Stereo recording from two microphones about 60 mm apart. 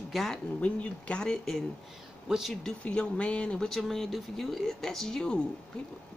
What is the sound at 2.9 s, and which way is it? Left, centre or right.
Speech, left.